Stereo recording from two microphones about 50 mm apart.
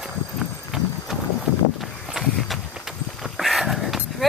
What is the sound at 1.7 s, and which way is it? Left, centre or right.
Walk, centre.